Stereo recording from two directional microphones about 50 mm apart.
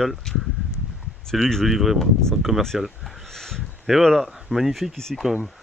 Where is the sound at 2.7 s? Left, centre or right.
Centre.